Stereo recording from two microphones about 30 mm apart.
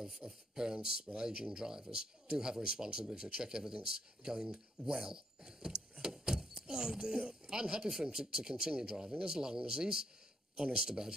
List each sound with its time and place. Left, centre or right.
0.2 s speech: right
6.0 s a sound: centre
8.0 s speech: right